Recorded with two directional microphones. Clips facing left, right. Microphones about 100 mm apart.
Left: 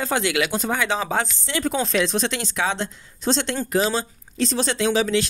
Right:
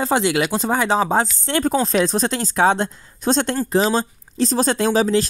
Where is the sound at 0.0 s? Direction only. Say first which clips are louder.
Right 4 dB; 30° right (ahead or behind).